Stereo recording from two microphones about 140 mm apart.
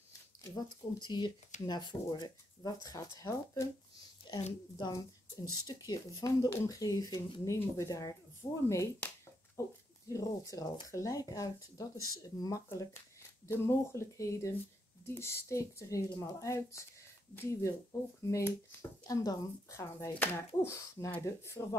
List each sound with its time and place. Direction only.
0.4 s speech: 30° left (ahead or behind)
4.3 s a sound: 35° left (ahead or behind)
4.7 s speech: 30° left (ahead or behind)
7.4 s speech: 20° left (ahead or behind)